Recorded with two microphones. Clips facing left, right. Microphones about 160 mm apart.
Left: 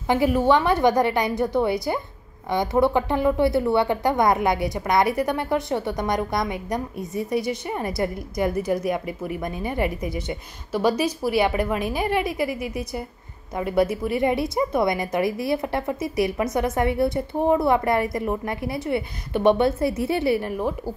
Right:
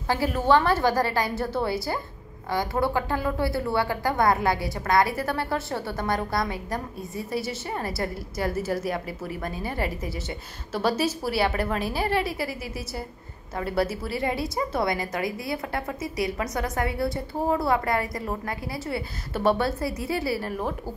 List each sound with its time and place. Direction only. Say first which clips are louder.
0.1 s a woman's voice: left 3 dB; 15° left (ahead or behind)
13.6 s a woman's voice: left 5 dB; 15° left (ahead or behind)